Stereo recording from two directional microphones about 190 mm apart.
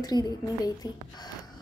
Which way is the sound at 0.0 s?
20° left (ahead or behind).